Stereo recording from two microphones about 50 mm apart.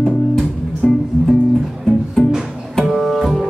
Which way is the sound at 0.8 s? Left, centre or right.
Centre.